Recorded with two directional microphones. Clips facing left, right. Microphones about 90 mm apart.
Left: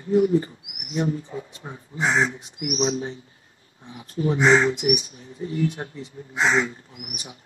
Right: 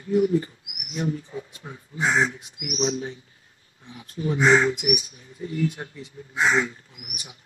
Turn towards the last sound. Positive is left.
turn(degrees=35)  # may be behind; listen again after turning